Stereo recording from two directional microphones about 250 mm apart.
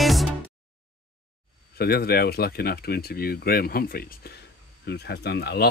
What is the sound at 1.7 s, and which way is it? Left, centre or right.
Speech, left.